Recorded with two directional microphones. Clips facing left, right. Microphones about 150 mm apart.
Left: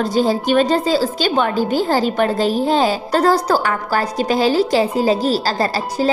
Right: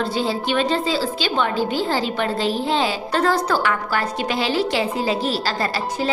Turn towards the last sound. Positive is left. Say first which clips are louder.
# left 4 dB
turn(degrees=40)  # may be behind; listen again after turning